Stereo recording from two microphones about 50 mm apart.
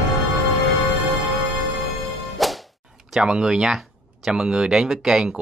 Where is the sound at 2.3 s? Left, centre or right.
Centre.